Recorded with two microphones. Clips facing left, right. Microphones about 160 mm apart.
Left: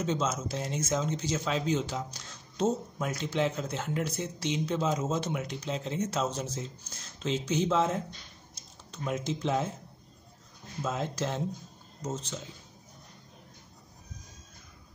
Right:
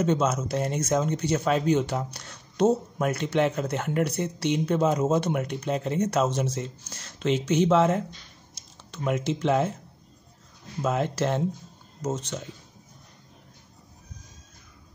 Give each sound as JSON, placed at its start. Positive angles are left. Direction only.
{"t": 0.0, "sound": "speech", "side_deg": -60}
{"t": 10.8, "sound": "speech", "side_deg": -65}